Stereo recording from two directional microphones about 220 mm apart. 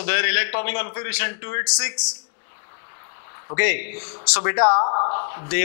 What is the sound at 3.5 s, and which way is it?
A man's voice, 15° left (ahead or behind).